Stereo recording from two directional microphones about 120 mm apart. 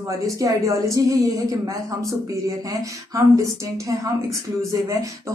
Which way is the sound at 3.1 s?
25° right (ahead or behind).